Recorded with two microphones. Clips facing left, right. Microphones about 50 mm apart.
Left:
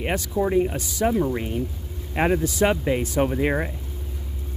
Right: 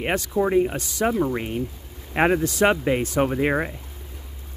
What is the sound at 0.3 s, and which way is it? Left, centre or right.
Speech, centre.